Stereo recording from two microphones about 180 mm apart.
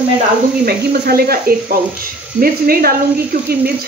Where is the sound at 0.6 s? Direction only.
60° right (ahead or behind).